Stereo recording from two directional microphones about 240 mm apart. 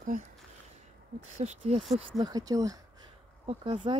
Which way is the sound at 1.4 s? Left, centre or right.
Right.